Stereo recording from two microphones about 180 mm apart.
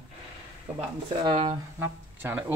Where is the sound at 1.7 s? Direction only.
10° right (ahead or behind).